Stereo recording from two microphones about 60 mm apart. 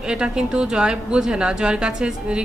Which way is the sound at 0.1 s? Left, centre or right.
Centre.